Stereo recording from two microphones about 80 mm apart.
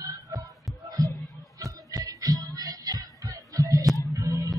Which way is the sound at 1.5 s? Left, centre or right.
Right.